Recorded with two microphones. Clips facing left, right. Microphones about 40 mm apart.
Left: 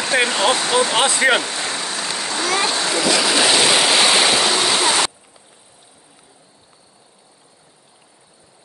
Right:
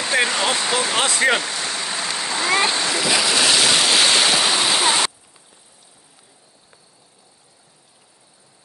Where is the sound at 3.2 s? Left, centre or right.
Centre.